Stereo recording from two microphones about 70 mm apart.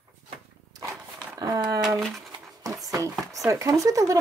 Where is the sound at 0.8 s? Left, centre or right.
Right.